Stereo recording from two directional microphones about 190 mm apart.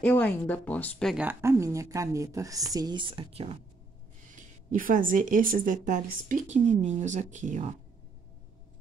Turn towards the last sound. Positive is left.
turn(degrees=-40)  # may be behind; listen again after turning